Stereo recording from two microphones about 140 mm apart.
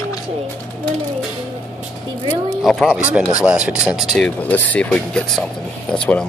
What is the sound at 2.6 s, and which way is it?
Speech, 5° right (ahead or behind).